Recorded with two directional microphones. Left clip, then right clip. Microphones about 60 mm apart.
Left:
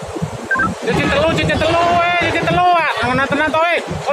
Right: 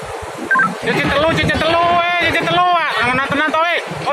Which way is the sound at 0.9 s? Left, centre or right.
Centre.